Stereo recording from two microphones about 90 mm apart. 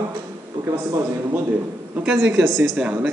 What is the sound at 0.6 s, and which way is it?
Speech, 30° right (ahead or behind).